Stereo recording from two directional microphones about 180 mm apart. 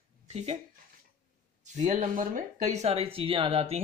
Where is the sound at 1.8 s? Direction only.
45° right (ahead or behind).